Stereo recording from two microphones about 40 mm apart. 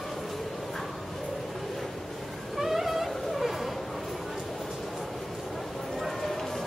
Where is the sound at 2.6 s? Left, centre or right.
Centre.